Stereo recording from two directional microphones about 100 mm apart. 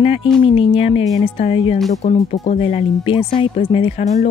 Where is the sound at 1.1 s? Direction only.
90° left.